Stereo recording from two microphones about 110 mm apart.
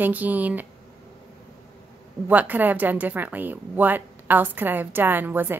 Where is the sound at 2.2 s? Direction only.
15° right (ahead or behind).